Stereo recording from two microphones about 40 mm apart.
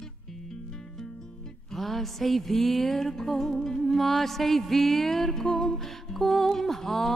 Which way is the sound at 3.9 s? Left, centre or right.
Centre.